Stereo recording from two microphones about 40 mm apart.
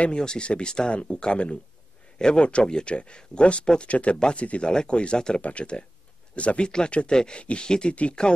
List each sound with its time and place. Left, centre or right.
0.1 s speech: left
5.4 s speech: left
7.9 s speech: left